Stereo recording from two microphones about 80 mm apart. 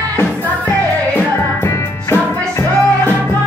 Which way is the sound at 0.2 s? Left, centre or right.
Left.